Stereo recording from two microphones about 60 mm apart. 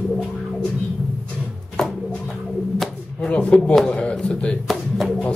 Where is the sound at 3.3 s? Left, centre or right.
Centre.